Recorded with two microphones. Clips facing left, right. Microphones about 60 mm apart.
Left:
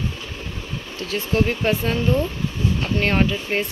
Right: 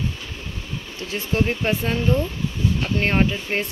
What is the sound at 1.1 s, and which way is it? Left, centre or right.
Speech, right.